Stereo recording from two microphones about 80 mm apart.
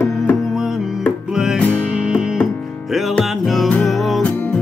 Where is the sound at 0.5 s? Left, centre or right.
Centre.